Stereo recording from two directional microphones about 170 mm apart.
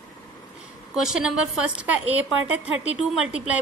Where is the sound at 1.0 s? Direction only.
5° right (ahead or behind).